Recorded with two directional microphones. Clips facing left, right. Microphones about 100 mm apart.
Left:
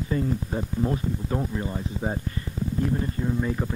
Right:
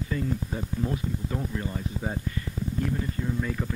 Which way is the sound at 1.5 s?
25° left (ahead or behind).